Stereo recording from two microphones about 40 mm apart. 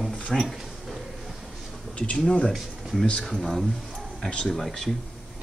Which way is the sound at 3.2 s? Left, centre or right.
Centre.